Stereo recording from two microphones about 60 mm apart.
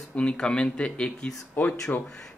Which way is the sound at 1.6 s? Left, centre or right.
Left.